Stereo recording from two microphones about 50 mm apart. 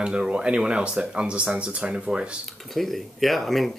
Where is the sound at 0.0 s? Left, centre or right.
Centre.